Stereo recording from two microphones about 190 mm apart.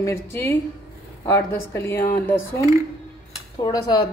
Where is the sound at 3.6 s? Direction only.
20° left (ahead or behind).